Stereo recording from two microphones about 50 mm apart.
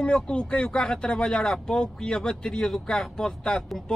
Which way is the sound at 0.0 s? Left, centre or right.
Centre.